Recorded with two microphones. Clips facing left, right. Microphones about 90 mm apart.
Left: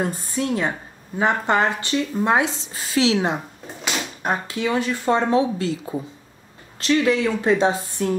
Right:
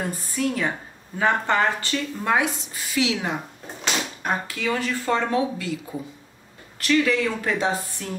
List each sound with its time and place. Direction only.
0.0 s a woman's voice: 25° left (ahead or behind)